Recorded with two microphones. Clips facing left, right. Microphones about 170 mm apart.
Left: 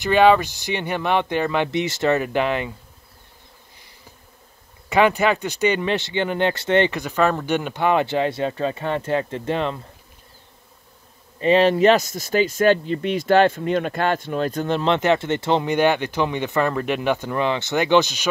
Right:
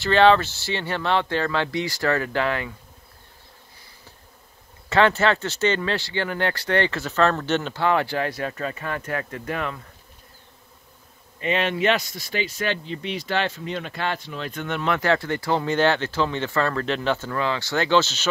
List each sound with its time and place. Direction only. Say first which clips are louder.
0.0 s speech: left 2 dB; 10° left (ahead or behind)
4.8 s speech: left 2 dB; 15° left (ahead or behind)
11.3 s speech: left 8 dB; 35° left (ahead or behind); by 18.3 s 15° left (ahead or behind)